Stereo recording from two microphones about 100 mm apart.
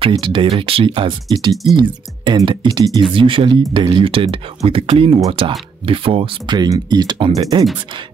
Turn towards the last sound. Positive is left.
turn(degrees=-55)  # may be behind; listen again after turning